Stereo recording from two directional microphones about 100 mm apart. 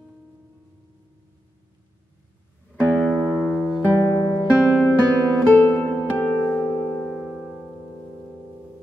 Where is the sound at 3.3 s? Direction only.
10° left (ahead or behind).